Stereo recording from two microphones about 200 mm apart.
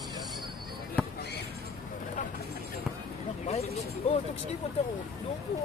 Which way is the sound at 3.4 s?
30° left (ahead or behind).